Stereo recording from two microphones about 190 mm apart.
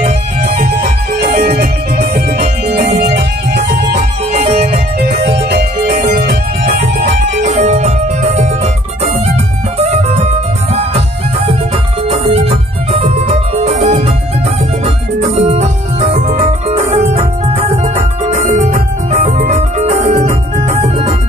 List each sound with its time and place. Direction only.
0.0 s music: 50° right (ahead or behind)
4.3 s music: 35° right (ahead or behind)
4.7 s music: 55° right (ahead or behind); by 8.5 s 35° right (ahead or behind)
9.8 s music: 35° right (ahead or behind)
12.1 s music: 30° right (ahead or behind)
15.3 s music: 35° right (ahead or behind)